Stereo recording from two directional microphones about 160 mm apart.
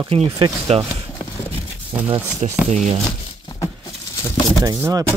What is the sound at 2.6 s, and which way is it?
Speech, 45° right (ahead or behind).